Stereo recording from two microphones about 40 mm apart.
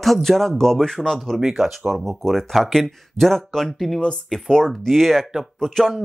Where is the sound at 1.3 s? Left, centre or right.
Centre.